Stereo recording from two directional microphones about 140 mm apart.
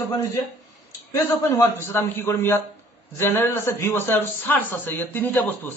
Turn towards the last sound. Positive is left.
turn(degrees=15)  # may be behind; listen again after turning